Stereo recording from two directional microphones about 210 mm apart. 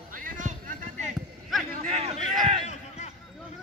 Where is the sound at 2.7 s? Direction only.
35° left (ahead or behind).